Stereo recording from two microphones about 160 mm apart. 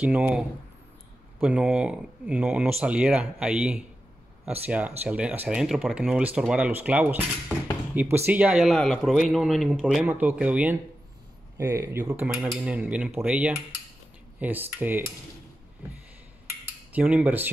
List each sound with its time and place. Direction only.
0.0 s a man's voice: 10° right (ahead or behind)
12.1 s speech: 5° right (ahead or behind)
16.9 s speech: 10° right (ahead or behind)